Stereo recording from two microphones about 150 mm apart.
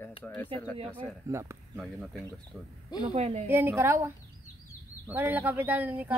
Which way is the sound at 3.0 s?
45° right (ahead or behind).